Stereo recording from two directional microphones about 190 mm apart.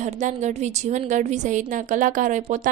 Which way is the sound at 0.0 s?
40° right (ahead or behind).